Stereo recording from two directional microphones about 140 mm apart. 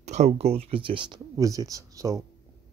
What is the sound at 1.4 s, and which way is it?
Speech, 25° right (ahead or behind).